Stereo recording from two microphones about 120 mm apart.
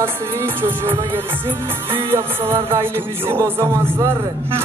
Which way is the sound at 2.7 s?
20° right (ahead or behind).